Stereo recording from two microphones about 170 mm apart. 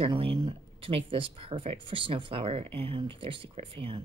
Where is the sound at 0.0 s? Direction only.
35° right (ahead or behind).